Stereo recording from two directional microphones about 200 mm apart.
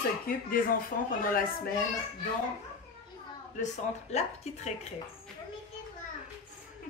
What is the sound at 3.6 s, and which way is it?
Speech, 35° left (ahead or behind).